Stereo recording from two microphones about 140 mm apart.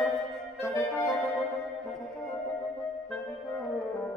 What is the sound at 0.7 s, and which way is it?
Clarinet, 20° left (ahead or behind).